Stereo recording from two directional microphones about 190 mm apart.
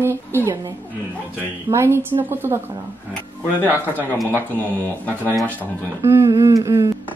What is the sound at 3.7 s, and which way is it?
Speech, 10° right (ahead or behind).